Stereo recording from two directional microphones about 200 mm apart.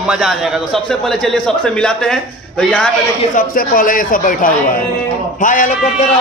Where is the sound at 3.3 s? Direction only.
45° left (ahead or behind).